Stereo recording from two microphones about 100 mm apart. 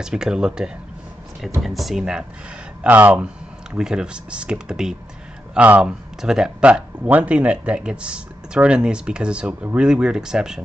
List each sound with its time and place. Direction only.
0.0 s speech: 5° right (ahead or behind)
2.8 s speech: 15° right (ahead or behind)